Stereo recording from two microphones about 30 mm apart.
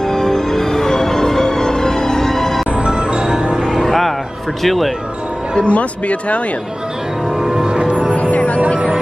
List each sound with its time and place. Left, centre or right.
0.0 s music: centre
2.7 s music: right
3.6 s music: centre
4.6 s speech: centre
5.6 s speech: left
7.3 s music: right
7.9 s music: right
8.2 s music: left
8.5 s music: right